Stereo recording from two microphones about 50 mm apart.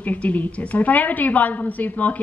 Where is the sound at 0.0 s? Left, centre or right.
Left.